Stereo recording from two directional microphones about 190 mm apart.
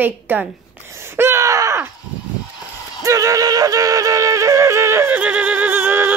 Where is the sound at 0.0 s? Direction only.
10° right (ahead or behind).